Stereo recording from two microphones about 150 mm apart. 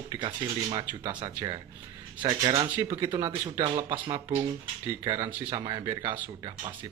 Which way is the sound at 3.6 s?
35° right (ahead or behind).